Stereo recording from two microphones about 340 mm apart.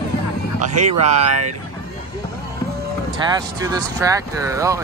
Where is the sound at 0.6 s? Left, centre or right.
Right.